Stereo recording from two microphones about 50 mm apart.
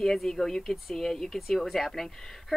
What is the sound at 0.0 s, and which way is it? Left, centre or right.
Speech, centre.